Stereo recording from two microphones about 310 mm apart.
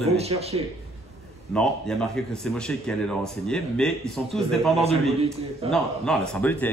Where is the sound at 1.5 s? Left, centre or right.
Centre.